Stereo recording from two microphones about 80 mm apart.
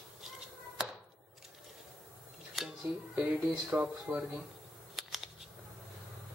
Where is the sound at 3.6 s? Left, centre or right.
Centre.